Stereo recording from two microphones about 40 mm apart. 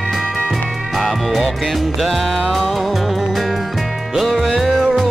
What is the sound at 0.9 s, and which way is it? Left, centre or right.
Music, centre.